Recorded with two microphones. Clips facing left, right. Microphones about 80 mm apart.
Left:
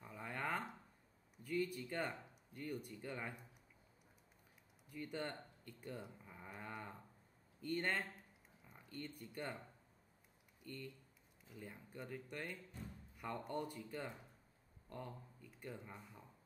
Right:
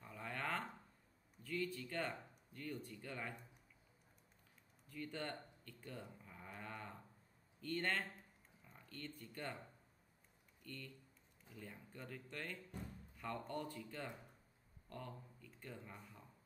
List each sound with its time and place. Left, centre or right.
0.0 s a sound: centre
1.4 s speech: centre
4.8 s speech: centre
10.6 s speech: centre